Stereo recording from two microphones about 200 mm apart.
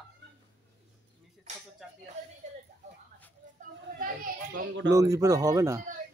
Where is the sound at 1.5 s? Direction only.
35° right (ahead or behind).